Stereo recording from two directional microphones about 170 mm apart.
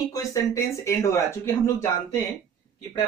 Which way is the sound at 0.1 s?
20° left (ahead or behind).